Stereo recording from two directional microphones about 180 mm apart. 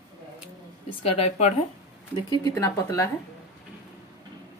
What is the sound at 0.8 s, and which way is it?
Speech, 35° left (ahead or behind).